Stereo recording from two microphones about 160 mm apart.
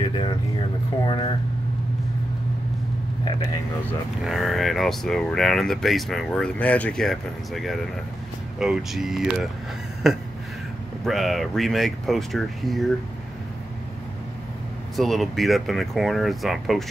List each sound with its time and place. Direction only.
0.0 s a sound: 30° left (ahead or behind)
1.0 s speech: 30° left (ahead or behind)
4.2 s speech: centre (ahead or behind)
11.1 s speech: centre (ahead or behind)
15.0 s speech: centre (ahead or behind)